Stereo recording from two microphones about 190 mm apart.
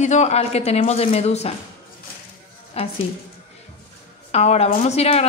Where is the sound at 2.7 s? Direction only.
30° left (ahead or behind).